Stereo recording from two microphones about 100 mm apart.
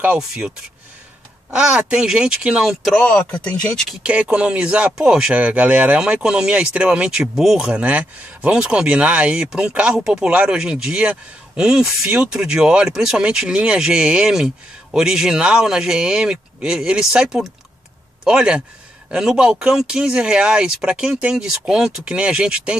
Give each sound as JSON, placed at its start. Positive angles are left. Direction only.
{"t": 0.2, "sound": "speech", "side_deg": -5}
{"t": 1.5, "sound": "speech", "side_deg": -10}
{"t": 2.8, "sound": "speech", "side_deg": 5}
{"t": 4.0, "sound": "speech", "side_deg": -10}